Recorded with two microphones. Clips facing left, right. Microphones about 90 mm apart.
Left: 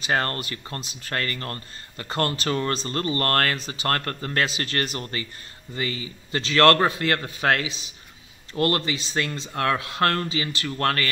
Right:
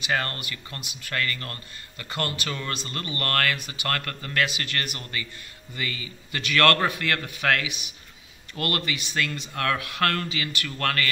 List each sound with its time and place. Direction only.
0.0 s speech: 35° left (ahead or behind)